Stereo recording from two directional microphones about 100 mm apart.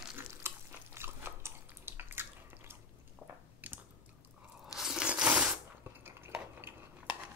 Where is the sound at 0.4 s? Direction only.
25° right (ahead or behind).